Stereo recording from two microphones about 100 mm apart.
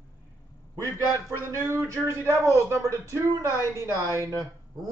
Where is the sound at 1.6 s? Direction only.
25° right (ahead or behind).